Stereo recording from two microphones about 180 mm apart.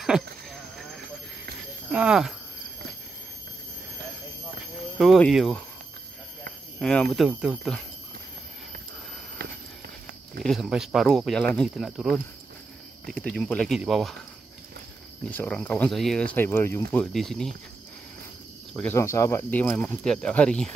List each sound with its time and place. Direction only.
0.0 s a sound: centre (ahead or behind)
1.9 s speech: 5° right (ahead or behind)
4.9 s speech: centre (ahead or behind)
6.8 s speech: 5° left (ahead or behind)
9.4 s walk: 55° right (ahead or behind)
10.4 s speech: centre (ahead or behind)
15.2 s speech: 5° left (ahead or behind)
18.7 s speech: 10° left (ahead or behind)